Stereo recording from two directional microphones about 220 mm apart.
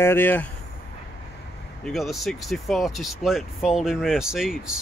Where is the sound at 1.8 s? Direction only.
Centre (ahead or behind).